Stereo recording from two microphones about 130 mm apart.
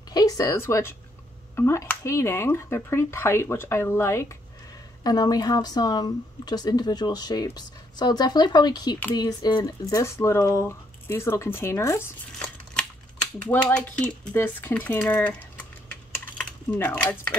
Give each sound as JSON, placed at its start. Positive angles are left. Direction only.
{"t": 0.1, "sound": "speech", "side_deg": 30}
{"t": 5.0, "sound": "speech", "side_deg": 30}
{"t": 13.5, "sound": "speech", "side_deg": 10}